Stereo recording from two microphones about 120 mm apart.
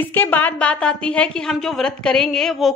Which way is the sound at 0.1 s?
15° left (ahead or behind).